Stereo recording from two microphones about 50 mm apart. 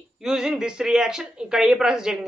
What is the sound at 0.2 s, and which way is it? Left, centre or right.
Speech, centre.